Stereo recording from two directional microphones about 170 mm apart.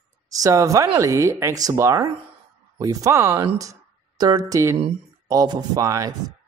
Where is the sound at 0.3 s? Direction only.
20° right (ahead or behind).